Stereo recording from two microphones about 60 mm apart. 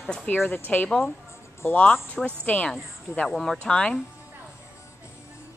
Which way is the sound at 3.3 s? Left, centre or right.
Centre.